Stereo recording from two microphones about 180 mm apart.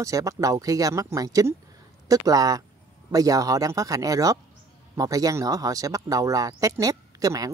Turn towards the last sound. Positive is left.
turn(degrees=-20)  # may be behind; listen again after turning